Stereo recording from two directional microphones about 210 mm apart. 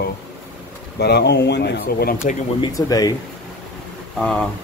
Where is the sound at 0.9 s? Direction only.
50° left (ahead or behind).